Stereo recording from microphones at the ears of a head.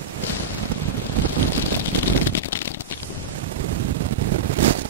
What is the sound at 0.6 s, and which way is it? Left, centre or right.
Wind noise, right.